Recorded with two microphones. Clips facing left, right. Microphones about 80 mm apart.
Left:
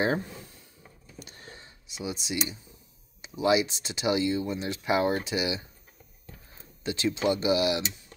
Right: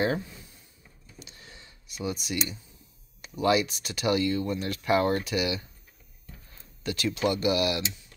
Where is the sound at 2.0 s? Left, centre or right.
Left.